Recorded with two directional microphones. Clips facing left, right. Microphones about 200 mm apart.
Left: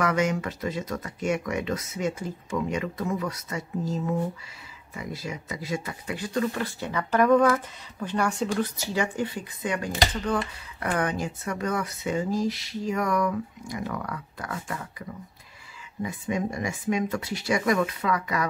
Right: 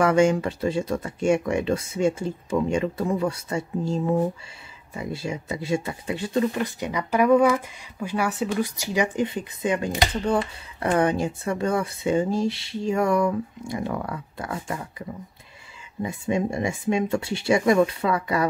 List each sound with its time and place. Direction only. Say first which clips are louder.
0.0 s speech: right 6 dB; 30° right (ahead or behind)